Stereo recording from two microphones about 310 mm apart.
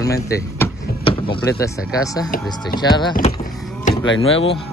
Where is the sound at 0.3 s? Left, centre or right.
Centre.